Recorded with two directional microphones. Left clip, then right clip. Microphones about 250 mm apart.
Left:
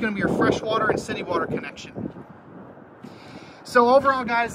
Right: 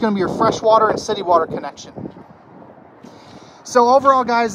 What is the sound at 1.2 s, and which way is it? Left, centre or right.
Speech, centre.